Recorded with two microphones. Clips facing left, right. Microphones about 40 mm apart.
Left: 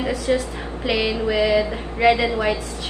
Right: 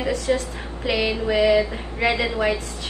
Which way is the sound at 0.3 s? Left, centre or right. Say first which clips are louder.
Left 2 dB; centre.